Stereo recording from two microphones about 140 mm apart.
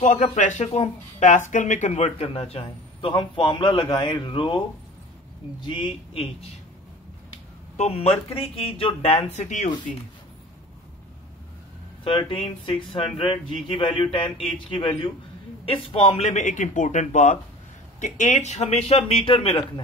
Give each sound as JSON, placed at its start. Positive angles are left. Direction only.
{"t": 0.0, "sound": "speech", "side_deg": 65}
{"t": 0.4, "sound": "speech", "side_deg": 50}
{"t": 7.7, "sound": "speech", "side_deg": 50}
{"t": 12.0, "sound": "speech", "side_deg": 40}